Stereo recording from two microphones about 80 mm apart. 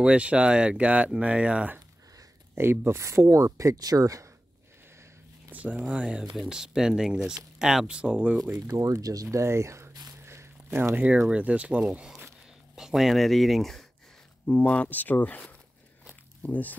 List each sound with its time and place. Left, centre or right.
0.0 s speech: centre
2.5 s speech: right
5.5 s speech: centre
8.7 s speech: right
10.2 s zipper: right
11.0 s speech: centre
14.4 s speech: centre